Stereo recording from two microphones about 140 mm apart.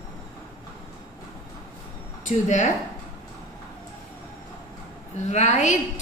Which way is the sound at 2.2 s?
60° left (ahead or behind).